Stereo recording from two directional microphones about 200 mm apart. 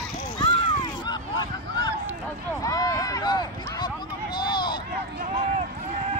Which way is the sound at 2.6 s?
15° left (ahead or behind).